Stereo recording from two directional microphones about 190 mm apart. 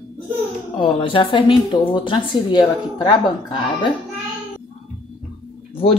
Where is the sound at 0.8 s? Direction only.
25° left (ahead or behind).